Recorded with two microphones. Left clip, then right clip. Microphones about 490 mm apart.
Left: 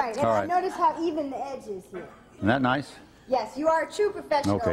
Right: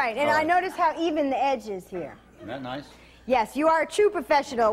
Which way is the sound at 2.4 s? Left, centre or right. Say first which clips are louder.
Left 11 dB; left.